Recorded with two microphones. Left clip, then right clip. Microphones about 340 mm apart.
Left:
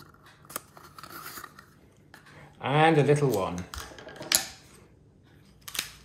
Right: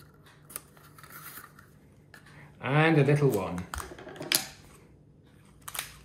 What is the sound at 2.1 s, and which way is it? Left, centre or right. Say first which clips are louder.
Speech: left 2 dB; centre.